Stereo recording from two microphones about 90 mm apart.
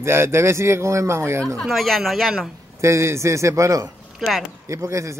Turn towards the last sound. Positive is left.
turn(degrees=-35)  # may be behind; listen again after turning